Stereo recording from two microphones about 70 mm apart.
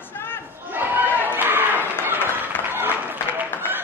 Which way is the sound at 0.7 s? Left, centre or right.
Right.